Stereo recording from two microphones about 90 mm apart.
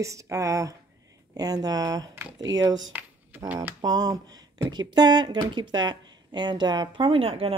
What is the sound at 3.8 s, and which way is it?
Speech, 50° right (ahead or behind).